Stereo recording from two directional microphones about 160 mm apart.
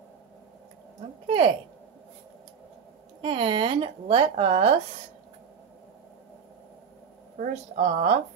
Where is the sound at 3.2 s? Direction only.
35° right (ahead or behind).